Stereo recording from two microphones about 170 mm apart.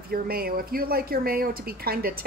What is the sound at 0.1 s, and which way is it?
A woman's voice, 60° right (ahead or behind).